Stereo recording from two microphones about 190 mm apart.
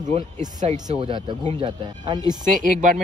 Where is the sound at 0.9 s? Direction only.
25° right (ahead or behind).